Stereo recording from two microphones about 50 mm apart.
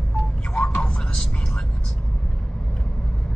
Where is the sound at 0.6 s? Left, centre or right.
Left.